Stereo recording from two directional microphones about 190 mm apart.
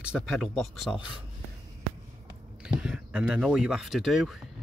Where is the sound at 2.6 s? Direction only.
5° right (ahead or behind).